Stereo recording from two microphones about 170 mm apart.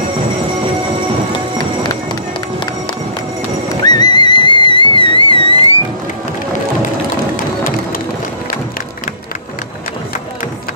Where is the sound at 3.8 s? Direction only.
25° left (ahead or behind).